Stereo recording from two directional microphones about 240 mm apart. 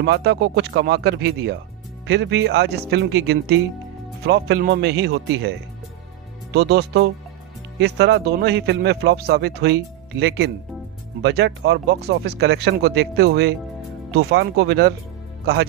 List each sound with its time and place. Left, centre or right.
0.0 s speech: right
6.5 s speech: right